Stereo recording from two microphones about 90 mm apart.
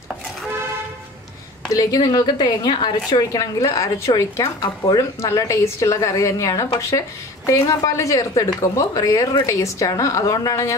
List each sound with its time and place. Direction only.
1.7 s a woman's voice: 40° left (ahead or behind)